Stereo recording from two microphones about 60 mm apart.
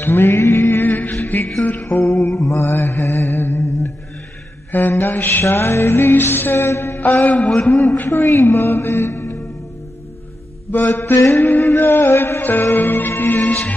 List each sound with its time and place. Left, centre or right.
0.0 s mantra: left
1.2 s music: left
2.4 s mantra: left
4.6 s music: left
5.4 s music: left
6.7 s mantra: left
7.2 s a sound: centre
8.1 s speech: left
10.7 s music: left
11.1 s mantra: left
11.4 s music: left